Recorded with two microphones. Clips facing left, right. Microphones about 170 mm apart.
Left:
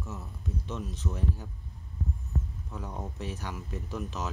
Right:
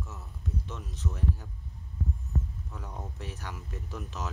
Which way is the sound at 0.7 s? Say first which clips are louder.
Left 3 dB; 20° left (ahead or behind).